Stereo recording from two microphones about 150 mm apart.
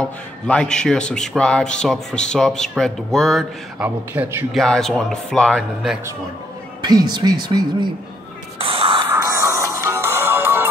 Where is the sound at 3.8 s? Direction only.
15° right (ahead or behind).